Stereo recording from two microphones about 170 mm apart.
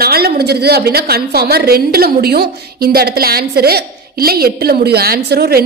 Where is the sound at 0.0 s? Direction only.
65° right (ahead or behind).